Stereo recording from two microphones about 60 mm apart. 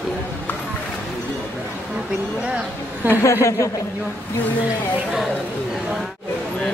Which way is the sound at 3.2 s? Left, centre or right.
Left.